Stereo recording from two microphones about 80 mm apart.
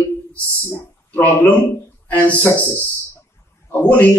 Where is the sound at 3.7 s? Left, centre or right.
Centre.